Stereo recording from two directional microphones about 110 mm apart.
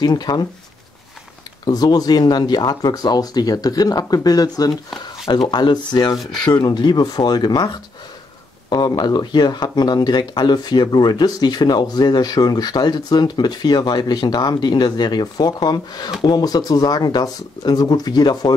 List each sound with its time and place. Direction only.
0.0 s speech: 40° left (ahead or behind)
1.7 s speech: 35° left (ahead or behind)